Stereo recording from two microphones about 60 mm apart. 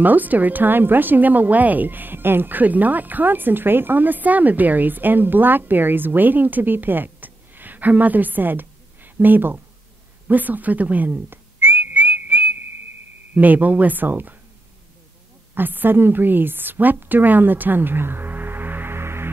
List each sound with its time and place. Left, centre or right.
0.0 s a woman's voice: right
10.2 s whistling: right
13.3 s speech: right
15.5 s a woman's voice: right